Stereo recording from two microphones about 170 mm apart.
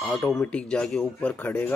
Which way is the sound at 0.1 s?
Centre (ahead or behind).